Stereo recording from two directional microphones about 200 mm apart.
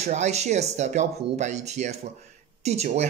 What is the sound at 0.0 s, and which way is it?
Speech, 35° right (ahead or behind).